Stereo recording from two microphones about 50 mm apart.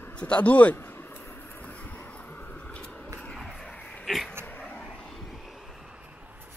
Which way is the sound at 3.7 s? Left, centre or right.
Left.